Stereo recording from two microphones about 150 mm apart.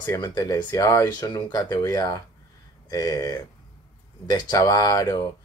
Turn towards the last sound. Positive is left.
turn(degrees=25)  # may be behind; listen again after turning